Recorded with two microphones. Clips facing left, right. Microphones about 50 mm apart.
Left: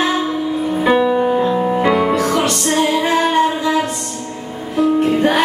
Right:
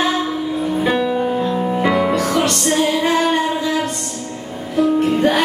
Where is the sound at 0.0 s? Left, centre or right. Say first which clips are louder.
Left 1 dB; centre.